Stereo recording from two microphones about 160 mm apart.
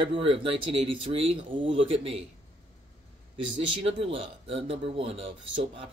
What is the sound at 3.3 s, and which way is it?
Speech, 35° right (ahead or behind).